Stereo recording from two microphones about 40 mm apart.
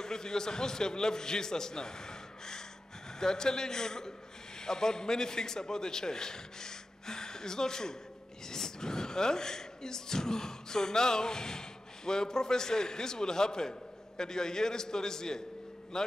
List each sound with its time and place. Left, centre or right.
0.0 s a man's voice: centre